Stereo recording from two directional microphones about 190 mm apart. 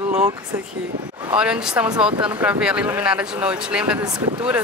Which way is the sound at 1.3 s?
5° right (ahead or behind).